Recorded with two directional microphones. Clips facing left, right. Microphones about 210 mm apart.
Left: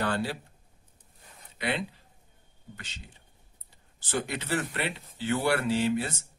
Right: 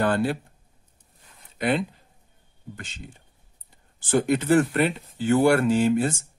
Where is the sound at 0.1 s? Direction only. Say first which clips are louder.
Right 7 dB; 55° right (ahead or behind).